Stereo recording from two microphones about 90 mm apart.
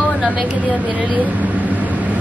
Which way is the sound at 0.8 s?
15° right (ahead or behind).